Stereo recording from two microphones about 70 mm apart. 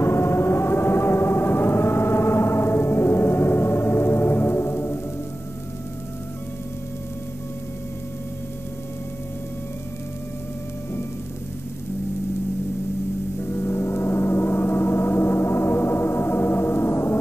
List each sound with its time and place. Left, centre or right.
0.0 s music: left
13.4 s gong: left